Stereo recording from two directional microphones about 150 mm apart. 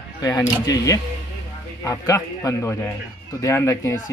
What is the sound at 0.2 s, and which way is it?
Speech, 25° left (ahead or behind).